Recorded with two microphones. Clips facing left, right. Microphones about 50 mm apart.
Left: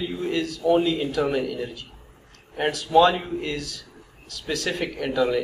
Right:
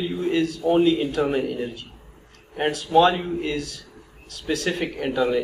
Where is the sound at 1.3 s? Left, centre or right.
Right.